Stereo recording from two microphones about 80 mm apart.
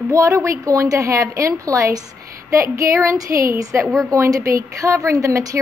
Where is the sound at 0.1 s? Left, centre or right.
Right.